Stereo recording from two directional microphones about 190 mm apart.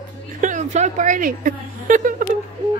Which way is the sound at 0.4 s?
40° right (ahead or behind).